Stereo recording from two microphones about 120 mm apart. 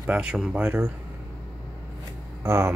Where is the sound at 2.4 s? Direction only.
25° right (ahead or behind).